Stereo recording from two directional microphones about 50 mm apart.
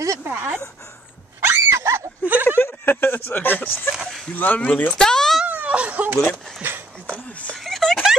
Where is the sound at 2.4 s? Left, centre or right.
Left.